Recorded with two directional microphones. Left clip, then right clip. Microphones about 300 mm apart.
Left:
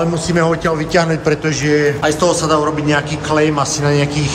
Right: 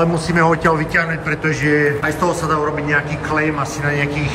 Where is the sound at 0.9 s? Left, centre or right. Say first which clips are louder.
Left 4 dB; centre.